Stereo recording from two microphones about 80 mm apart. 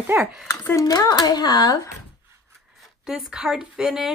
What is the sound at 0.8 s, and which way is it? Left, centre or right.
Speech, left.